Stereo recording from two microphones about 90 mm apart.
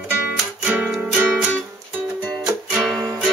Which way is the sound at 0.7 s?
15° right (ahead or behind).